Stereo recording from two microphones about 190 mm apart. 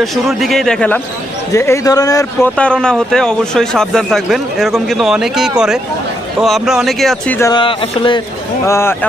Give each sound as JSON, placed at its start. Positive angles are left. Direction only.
{"t": 0.0, "sound": "a man's voice", "side_deg": 0}
{"t": 2.5, "sound": "a man's voice", "side_deg": 5}
{"t": 7.3, "sound": "a man's voice", "side_deg": 15}
{"t": 7.6, "sound": "speech", "side_deg": 25}
{"t": 8.6, "sound": "a man's voice", "side_deg": 15}